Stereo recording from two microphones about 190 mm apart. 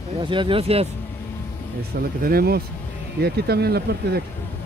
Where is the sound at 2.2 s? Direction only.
55° right (ahead or behind).